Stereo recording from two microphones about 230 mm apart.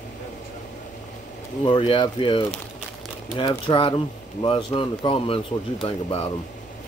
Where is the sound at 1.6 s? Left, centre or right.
Left.